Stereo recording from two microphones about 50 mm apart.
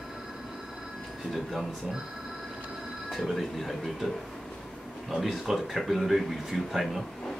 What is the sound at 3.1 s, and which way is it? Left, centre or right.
Speech, centre.